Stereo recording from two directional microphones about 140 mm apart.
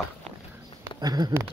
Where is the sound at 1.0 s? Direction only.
30° right (ahead or behind).